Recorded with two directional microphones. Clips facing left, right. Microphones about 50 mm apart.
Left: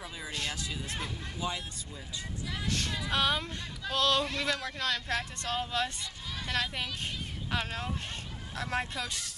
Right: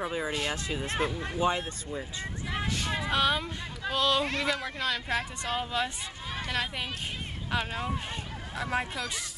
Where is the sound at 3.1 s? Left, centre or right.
Centre.